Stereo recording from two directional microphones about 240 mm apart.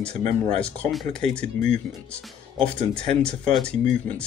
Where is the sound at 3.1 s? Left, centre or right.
Centre.